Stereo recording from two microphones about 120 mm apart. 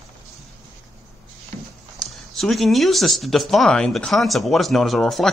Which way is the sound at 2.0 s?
Centre (ahead or behind).